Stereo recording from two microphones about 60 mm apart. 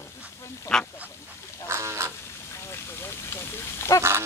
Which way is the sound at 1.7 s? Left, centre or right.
Right.